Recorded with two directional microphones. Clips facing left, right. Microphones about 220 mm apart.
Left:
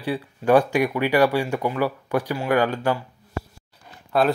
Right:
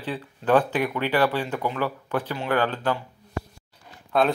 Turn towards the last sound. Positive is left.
turn(degrees=5)  # may be behind; listen again after turning